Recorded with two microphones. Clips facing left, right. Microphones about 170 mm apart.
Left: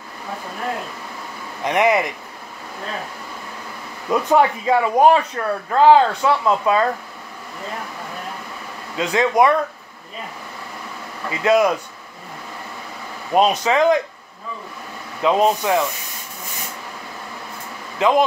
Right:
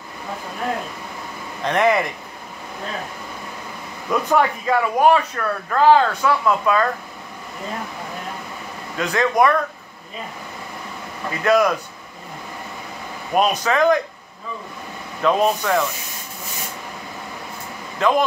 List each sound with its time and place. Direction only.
1.6 s speech: 15° left (ahead or behind)
4.1 s speech: 25° left (ahead or behind)
8.9 s speech: 20° left (ahead or behind)
11.2 s speech: 25° left (ahead or behind)
13.3 s speech: 25° left (ahead or behind)
15.2 s speech: 20° left (ahead or behind)
17.9 s speech: 20° left (ahead or behind)